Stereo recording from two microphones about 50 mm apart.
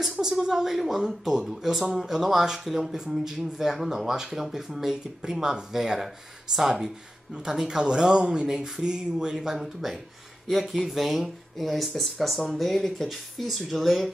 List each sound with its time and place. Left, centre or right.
0.1 s speech: centre
9.6 s speech: centre